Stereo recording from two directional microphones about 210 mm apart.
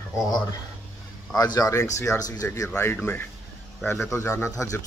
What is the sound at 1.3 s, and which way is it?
A man's voice, 20° left (ahead or behind).